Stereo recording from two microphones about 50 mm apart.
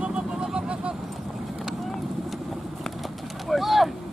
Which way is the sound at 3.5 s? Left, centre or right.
Centre.